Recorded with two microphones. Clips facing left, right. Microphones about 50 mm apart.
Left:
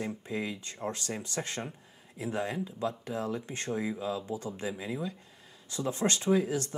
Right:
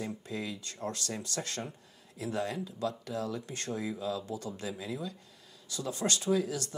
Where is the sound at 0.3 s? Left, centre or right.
Left.